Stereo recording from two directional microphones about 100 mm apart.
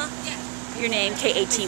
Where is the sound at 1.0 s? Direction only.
20° left (ahead or behind).